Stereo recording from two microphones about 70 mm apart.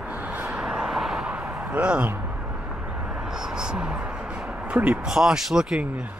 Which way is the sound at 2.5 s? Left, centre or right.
Right.